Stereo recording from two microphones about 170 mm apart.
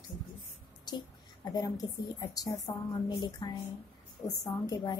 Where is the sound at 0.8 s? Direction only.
25° left (ahead or behind).